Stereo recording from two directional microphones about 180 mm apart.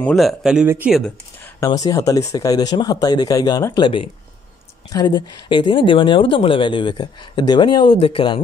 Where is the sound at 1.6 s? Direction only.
20° left (ahead or behind).